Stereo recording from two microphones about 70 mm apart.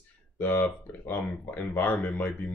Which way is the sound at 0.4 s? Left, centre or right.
Left.